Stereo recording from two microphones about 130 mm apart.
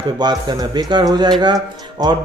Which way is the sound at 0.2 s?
35° right (ahead or behind).